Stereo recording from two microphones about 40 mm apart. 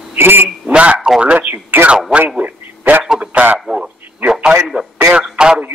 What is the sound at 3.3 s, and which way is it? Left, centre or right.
Speech, right.